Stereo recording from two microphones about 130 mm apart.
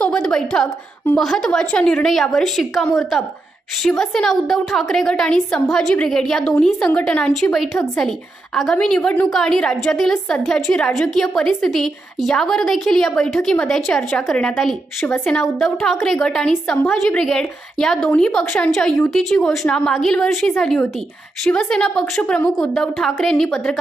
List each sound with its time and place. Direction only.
0.0 s a sound: 5° left (ahead or behind)
1.1 s a woman's voice: centre (ahead or behind)
16.7 s speech: 15° left (ahead or behind)
17.2 s a woman's voice: 5° left (ahead or behind)